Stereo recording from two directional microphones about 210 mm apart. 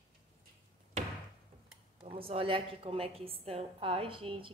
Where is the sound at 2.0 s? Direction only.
25° right (ahead or behind).